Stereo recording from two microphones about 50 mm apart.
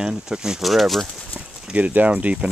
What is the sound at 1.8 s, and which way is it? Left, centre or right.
Speech, right.